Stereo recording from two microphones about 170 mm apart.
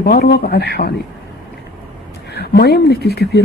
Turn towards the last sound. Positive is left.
turn(degrees=70)  # may be behind; listen again after turning